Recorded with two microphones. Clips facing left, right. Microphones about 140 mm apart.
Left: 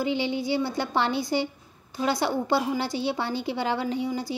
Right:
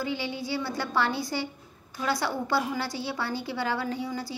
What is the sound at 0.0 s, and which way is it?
A woman's voice, 20° left (ahead or behind).